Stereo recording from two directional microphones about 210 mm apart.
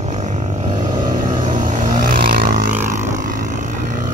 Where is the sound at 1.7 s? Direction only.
35° right (ahead or behind).